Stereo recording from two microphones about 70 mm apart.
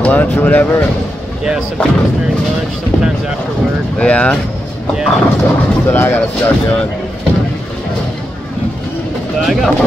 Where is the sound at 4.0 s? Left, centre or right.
Centre.